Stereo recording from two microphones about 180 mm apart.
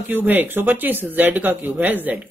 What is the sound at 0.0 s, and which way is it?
Speech, 10° right (ahead or behind).